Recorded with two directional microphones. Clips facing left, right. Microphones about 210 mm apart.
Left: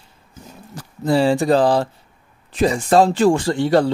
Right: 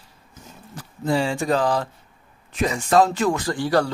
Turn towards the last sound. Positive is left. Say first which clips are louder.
# left 5 dB
turn(degrees=25)  # may be behind; listen again after turning